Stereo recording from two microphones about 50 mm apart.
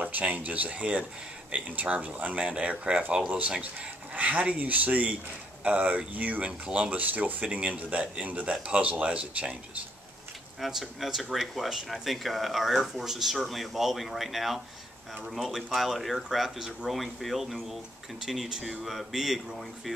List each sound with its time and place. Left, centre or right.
0.0 s speech: right; by 3.3 s centre
4.1 s speech: right
10.6 s speech: centre